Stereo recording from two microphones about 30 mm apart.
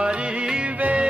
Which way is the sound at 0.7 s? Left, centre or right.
Right.